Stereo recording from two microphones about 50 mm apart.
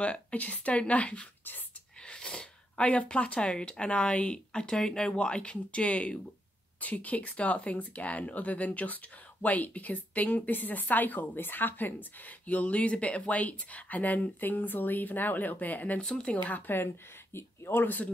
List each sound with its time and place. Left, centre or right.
0.0 s a woman's voice: left
16.0 s speech: centre
16.4 s speech: left
16.7 s speech: left